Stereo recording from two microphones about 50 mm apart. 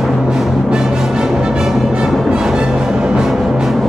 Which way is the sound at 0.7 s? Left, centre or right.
Centre.